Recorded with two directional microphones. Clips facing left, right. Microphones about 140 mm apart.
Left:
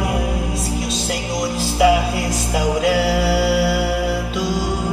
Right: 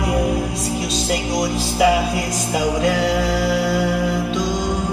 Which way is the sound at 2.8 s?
5° left (ahead or behind).